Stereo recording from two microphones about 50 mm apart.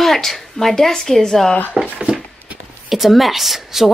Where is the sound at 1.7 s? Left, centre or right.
Centre.